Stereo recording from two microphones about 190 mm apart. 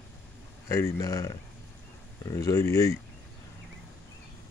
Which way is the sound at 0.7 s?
15° left (ahead or behind).